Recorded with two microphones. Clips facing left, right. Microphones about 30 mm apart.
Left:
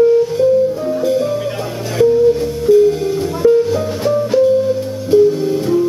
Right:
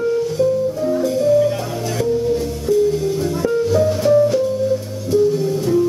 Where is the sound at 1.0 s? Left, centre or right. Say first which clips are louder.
Right 2 dB; left.